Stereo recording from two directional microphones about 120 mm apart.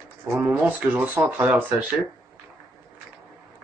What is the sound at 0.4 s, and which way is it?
Speech, 10° right (ahead or behind).